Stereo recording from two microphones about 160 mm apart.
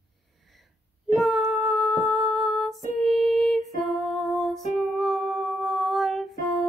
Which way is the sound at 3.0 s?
Centre (ahead or behind).